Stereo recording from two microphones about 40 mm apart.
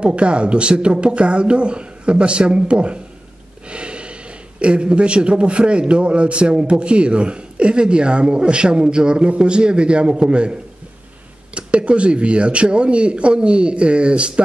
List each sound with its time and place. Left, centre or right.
0.0 s speech: right